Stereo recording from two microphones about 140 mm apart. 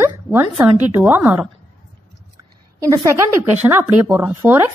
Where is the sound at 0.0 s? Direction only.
15° right (ahead or behind).